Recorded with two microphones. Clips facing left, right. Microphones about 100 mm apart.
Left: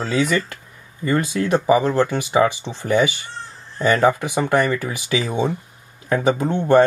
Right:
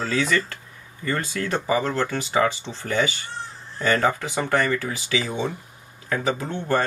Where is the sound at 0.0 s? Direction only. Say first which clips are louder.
Left 3 dB; 15° left (ahead or behind).